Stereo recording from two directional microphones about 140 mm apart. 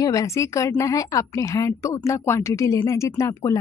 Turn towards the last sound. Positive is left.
turn(degrees=25)  # may be behind; listen again after turning